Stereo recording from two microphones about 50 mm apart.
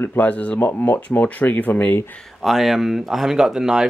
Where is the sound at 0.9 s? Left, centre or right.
Left.